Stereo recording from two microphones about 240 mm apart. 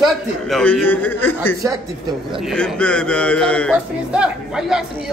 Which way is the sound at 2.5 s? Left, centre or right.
Centre.